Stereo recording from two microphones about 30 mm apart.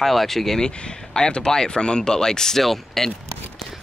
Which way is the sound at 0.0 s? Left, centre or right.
Centre.